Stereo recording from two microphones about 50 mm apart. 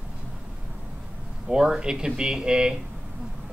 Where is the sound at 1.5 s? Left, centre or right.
Centre.